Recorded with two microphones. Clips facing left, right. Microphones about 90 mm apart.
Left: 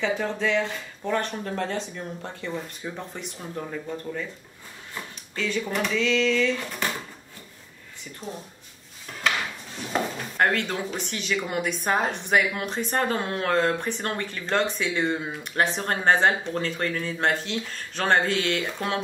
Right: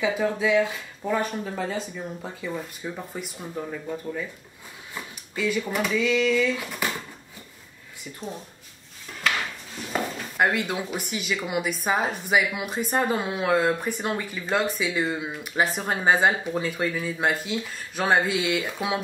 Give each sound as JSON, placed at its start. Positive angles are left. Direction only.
{"t": 0.0, "sound": "speech", "side_deg": -5}
{"t": 10.3, "sound": "a woman's voice", "side_deg": -5}